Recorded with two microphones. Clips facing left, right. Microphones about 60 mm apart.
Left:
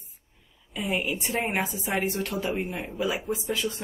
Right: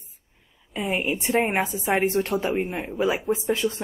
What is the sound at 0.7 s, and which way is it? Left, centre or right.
A woman's voice, right.